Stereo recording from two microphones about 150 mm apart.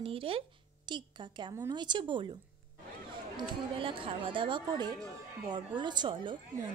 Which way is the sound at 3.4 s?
35° right (ahead or behind).